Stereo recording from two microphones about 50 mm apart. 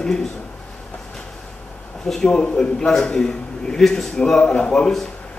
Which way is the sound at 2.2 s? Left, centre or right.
Centre.